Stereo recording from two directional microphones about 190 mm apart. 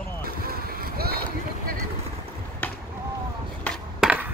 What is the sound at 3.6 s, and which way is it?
Cutlery, centre (ahead or behind).